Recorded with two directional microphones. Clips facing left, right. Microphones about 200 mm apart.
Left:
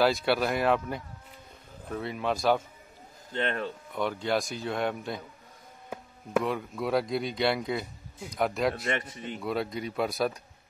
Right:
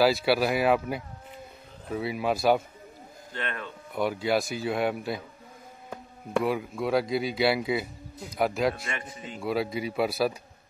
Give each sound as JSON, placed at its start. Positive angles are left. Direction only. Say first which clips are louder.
{"t": 0.0, "sound": "speech", "louder": "right 2 dB", "side_deg": -5}
{"t": 3.3, "sound": "speech", "louder": "left 5 dB", "side_deg": 30}
{"t": 3.9, "sound": "speech", "louder": "right 3 dB", "side_deg": -10}
{"t": 6.4, "sound": "speech", "louder": "right 3 dB", "side_deg": -5}